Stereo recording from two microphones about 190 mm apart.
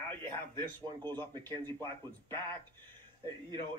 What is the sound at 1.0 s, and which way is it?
Speech, 10° left (ahead or behind).